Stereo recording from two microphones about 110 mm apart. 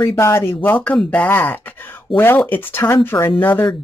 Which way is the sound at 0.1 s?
25° left (ahead or behind).